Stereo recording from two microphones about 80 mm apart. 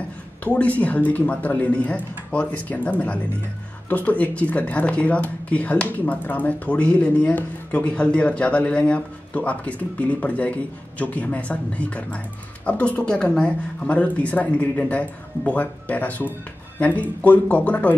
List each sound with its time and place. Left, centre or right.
0.4 s speech: centre